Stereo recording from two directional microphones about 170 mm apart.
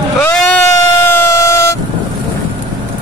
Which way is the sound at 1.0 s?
15° left (ahead or behind).